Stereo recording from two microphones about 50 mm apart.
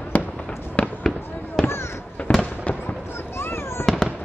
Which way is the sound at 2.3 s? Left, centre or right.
Left.